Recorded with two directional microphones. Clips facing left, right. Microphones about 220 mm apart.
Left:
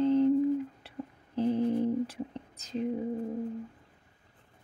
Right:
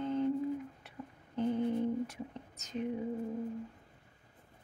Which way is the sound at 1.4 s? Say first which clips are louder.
Left 4 dB; 35° left (ahead or behind).